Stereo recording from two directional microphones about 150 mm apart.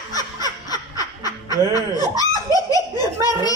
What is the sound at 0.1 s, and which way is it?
Snicker, 25° left (ahead or behind).